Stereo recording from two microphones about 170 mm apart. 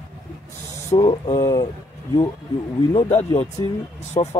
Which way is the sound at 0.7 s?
20° left (ahead or behind).